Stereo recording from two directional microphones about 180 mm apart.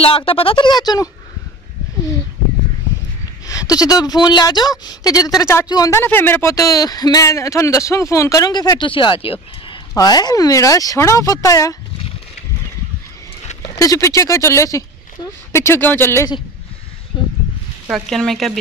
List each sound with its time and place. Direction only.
0.0 s speech: 30° left (ahead or behind)
3.4 s speech: 20° left (ahead or behind)
13.7 s speech: 15° left (ahead or behind)
17.1 s a sound: 25° left (ahead or behind)
17.8 s speech: centre (ahead or behind)